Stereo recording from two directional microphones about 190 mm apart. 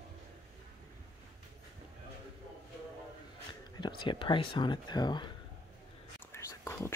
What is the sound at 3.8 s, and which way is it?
Speech, 25° left (ahead or behind).